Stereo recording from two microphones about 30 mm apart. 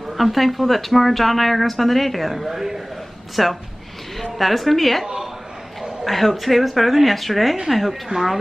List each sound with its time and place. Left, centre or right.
0.0 s speech: centre
2.3 s speech: centre
5.0 s a sound: centre
6.0 s speech: centre
8.1 s speech: right